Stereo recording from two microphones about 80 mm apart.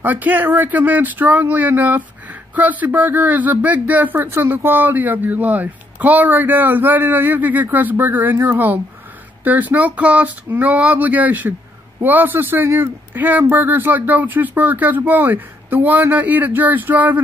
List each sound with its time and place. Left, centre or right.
0.0 s speech: right